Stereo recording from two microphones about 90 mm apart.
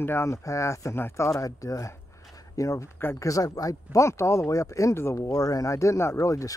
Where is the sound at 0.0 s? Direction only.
30° left (ahead or behind).